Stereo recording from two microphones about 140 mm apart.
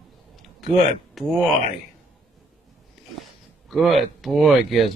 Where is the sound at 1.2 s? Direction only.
Centre (ahead or behind).